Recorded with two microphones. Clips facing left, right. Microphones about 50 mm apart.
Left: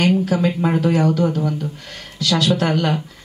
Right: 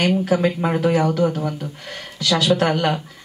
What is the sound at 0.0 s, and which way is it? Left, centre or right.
Speech, centre.